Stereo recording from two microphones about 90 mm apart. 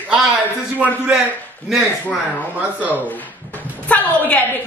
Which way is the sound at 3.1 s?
20° left (ahead or behind).